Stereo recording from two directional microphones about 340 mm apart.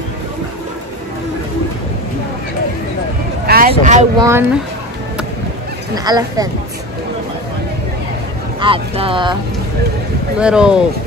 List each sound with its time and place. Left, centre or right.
3.4 s a sound: right
3.8 s speech: right
5.9 s speech: centre
8.5 s speech: centre
10.4 s speech: centre